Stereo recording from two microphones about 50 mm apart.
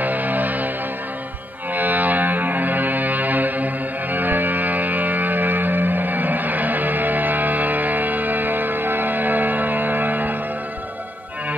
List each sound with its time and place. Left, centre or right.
0.0 s music: right
1.7 s music: right